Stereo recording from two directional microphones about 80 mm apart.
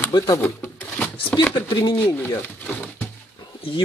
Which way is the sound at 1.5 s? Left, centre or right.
Left.